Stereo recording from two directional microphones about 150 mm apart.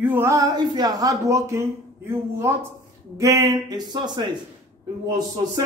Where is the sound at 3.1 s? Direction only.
20° right (ahead or behind).